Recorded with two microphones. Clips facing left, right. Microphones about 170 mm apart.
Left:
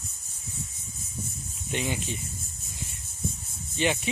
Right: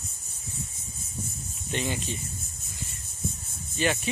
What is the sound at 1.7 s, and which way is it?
Speech, 10° left (ahead or behind).